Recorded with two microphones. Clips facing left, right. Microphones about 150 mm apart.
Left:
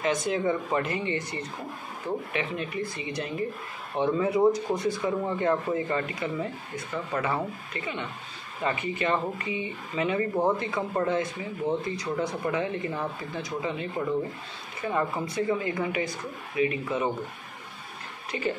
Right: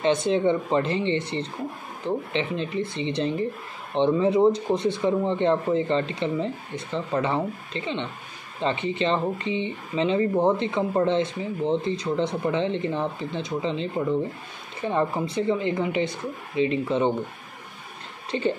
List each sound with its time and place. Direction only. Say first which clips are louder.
0.0 s speech: right 5 dB; 30° right (ahead or behind)
18.3 s speech: right 5 dB; 35° right (ahead or behind)